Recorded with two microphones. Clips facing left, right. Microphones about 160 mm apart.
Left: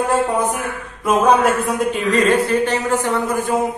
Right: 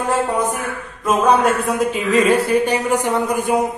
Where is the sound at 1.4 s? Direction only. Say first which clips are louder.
Even; centre (ahead or behind).